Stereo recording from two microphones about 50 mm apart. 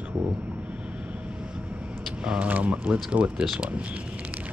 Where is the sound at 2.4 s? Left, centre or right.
Right.